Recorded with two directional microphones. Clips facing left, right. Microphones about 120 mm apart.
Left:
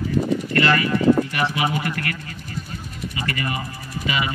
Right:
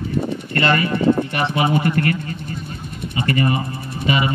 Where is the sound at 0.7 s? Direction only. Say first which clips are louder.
Right 1 dB; 25° right (ahead or behind).